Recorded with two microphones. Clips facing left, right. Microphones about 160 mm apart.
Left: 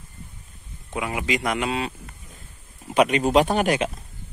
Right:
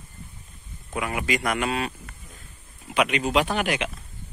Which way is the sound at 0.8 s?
20° left (ahead or behind).